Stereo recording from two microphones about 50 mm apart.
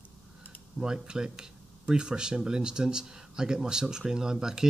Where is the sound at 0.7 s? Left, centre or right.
Centre.